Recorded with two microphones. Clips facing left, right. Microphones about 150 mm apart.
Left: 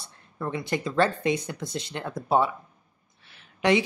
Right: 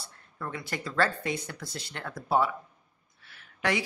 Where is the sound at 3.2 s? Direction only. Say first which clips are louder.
Left 6 dB; 20° left (ahead or behind).